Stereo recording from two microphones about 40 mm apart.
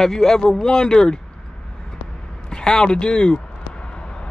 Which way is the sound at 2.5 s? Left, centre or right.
Centre.